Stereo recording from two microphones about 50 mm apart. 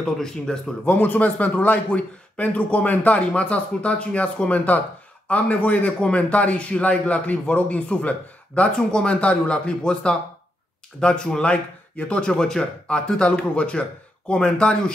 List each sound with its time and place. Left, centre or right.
0.0 s a man's voice: centre
0.8 s a man's voice: left; by 14.9 s centre